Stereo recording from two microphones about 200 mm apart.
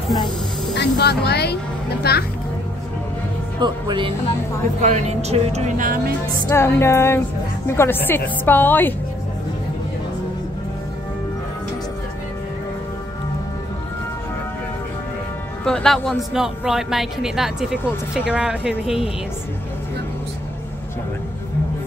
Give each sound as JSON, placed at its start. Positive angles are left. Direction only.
{"t": 0.7, "sound": "a child's voice", "side_deg": 55}
{"t": 3.6, "sound": "speech", "side_deg": -20}
{"t": 4.8, "sound": "speech", "side_deg": -35}
{"t": 6.5, "sound": "a woman's voice", "side_deg": 15}
{"t": 15.6, "sound": "speech", "side_deg": 5}